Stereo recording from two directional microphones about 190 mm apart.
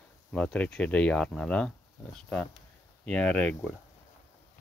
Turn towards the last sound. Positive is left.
turn(degrees=5)  # may be behind; listen again after turning